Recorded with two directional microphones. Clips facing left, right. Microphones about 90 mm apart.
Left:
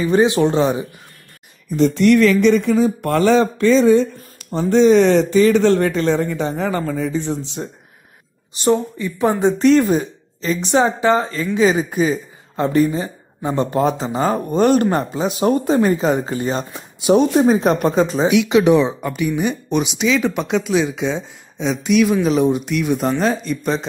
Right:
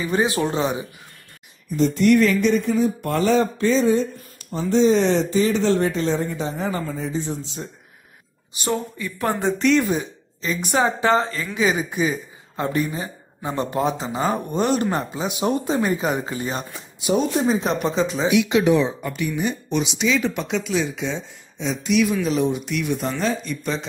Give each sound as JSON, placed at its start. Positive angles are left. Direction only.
{"t": 0.0, "sound": "a woman's voice", "side_deg": 30}
{"t": 1.8, "sound": "speech", "side_deg": 90}
{"t": 8.6, "sound": "a woman's voice", "side_deg": 20}
{"t": 9.6, "sound": "a woman's voice", "side_deg": 40}
{"t": 17.0, "sound": "speech", "side_deg": 50}
{"t": 18.3, "sound": "speech", "side_deg": 80}